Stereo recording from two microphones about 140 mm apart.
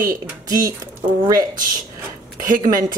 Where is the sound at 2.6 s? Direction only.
25° right (ahead or behind).